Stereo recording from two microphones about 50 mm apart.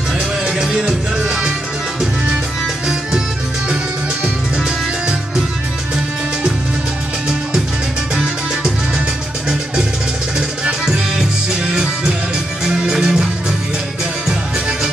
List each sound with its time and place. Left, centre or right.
0.5 s music: centre
10.6 s music: centre